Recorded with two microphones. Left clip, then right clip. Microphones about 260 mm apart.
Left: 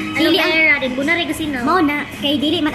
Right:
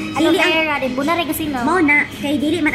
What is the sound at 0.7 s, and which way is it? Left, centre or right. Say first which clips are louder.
Music: left 3 dB; centre.